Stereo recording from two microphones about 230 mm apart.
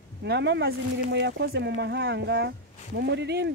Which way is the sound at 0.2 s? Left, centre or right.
Right.